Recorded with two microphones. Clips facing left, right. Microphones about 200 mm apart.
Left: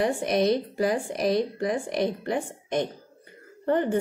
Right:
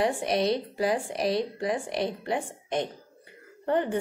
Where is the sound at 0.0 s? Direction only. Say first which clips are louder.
Left 2 dB; 50° left (ahead or behind).